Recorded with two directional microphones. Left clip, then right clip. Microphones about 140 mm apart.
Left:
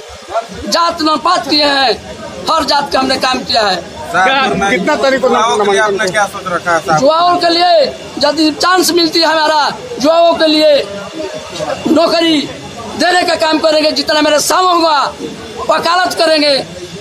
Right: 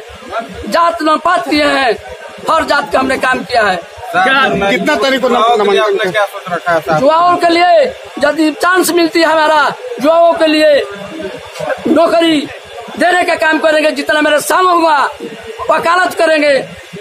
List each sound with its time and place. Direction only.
0.7 s a man's voice: 5° right (ahead or behind)
4.1 s a man's voice: 65° right (ahead or behind)
4.6 s a man's voice: 15° right (ahead or behind)
5.8 s a man's voice: 90° right
7.1 s a man's voice: 5° right (ahead or behind)
11.9 s a man's voice: 10° right (ahead or behind)